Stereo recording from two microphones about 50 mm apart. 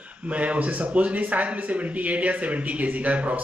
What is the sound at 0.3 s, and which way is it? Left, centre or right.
Speech, right.